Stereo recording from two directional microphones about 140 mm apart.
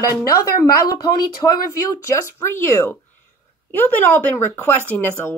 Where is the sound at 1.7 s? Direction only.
20° left (ahead or behind).